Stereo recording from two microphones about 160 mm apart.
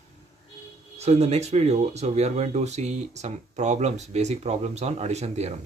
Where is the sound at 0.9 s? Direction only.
40° right (ahead or behind).